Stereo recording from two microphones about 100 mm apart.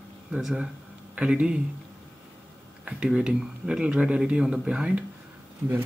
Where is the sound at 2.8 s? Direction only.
10° right (ahead or behind).